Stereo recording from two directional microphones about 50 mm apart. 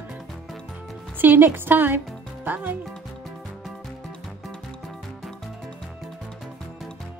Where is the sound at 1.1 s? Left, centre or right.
Right.